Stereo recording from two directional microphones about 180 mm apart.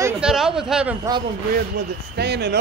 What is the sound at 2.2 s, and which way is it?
Speech, 65° right (ahead or behind).